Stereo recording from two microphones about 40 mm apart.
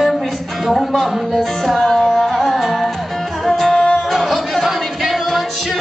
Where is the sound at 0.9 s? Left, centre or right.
Centre.